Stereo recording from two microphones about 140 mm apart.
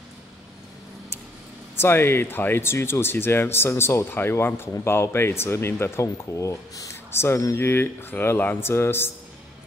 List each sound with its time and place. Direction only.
1.8 s speech: 15° left (ahead or behind)